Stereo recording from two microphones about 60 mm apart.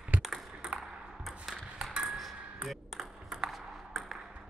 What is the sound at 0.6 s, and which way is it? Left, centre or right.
Ping, centre.